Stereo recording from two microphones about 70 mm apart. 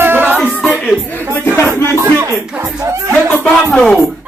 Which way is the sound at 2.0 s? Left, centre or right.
Right.